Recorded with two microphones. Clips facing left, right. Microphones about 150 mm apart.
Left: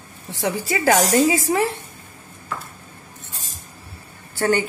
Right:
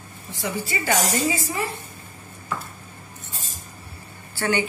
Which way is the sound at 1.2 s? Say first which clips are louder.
Left 7 dB; 90° left.